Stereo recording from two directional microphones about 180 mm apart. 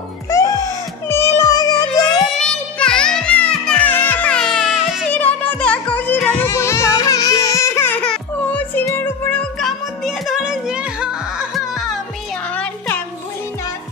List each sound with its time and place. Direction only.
0.3 s music: 20° left (ahead or behind)
2.3 s music: 5° left (ahead or behind)
5.1 s music: 10° left (ahead or behind)
12.5 s music: 10° left (ahead or behind)